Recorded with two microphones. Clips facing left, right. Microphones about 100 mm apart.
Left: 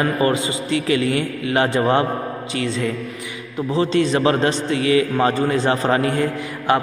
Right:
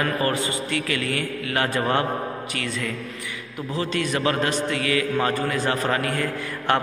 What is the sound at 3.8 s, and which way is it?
A man's voice, 25° left (ahead or behind).